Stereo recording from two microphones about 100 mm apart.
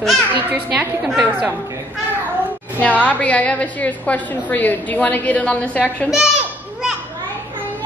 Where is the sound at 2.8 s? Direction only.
15° left (ahead or behind).